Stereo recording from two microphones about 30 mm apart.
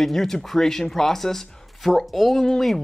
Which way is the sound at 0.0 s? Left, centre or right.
Centre.